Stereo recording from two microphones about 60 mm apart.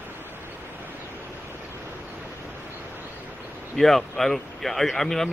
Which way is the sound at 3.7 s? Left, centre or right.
Centre.